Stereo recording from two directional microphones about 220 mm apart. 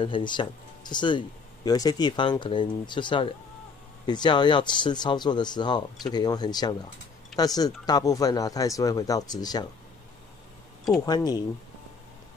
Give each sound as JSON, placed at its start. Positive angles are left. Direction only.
{"t": 0.0, "sound": "speech", "side_deg": 20}
{"t": 11.1, "sound": "speech", "side_deg": 20}